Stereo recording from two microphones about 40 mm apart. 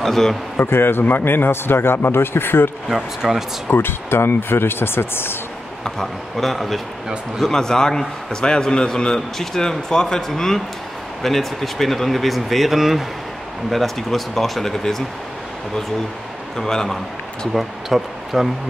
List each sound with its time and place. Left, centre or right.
0.0 s a man's voice: centre
0.6 s a man's voice: left
2.9 s speech: centre
3.7 s a man's voice: left
6.3 s speech: centre
7.4 s a man's voice: centre
16.5 s a man's voice: centre
17.6 s speech: centre